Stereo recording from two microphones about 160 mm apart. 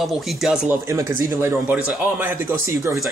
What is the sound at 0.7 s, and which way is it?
Speech, 15° right (ahead or behind).